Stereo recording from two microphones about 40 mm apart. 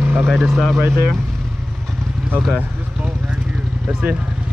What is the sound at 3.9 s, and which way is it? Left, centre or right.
Speech, right.